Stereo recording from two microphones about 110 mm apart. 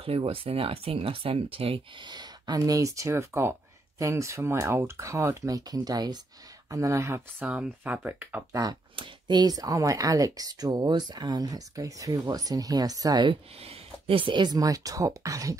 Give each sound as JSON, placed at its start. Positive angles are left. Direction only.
{"t": 0.0, "sound": "speech", "side_deg": -55}
{"t": 2.0, "sound": "speech", "side_deg": -40}
{"t": 7.4, "sound": "speech", "side_deg": -10}
{"t": 8.5, "sound": "speech", "side_deg": -35}
{"t": 8.9, "sound": "speech", "side_deg": -45}
{"t": 13.7, "sound": "speech", "side_deg": -55}